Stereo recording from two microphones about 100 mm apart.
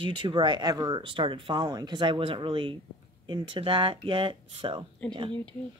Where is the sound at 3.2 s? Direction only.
45° right (ahead or behind).